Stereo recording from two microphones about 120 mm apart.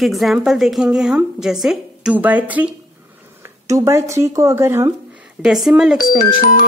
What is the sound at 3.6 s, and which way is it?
Speech, 25° right (ahead or behind).